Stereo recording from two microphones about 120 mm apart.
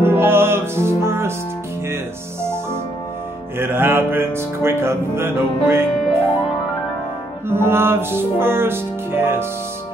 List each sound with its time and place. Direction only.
0.0 s music: 20° right (ahead or behind)
3.5 s speech: 20° right (ahead or behind)
7.4 s speech: 20° right (ahead or behind)